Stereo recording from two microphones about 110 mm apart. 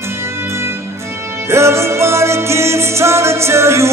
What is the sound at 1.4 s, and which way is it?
Music, 25° right (ahead or behind).